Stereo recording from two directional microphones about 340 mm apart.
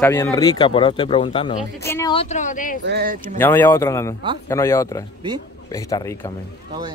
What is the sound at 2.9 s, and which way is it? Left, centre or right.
Speech, right.